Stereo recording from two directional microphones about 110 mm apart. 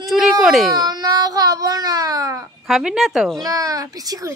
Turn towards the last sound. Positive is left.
turn(degrees=-35)  # may be behind; listen again after turning